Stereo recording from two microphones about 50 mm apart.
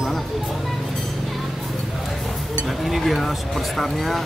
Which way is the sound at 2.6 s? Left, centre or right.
Centre.